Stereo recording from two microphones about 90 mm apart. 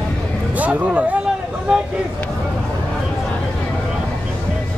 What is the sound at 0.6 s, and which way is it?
Speech, 15° right (ahead or behind).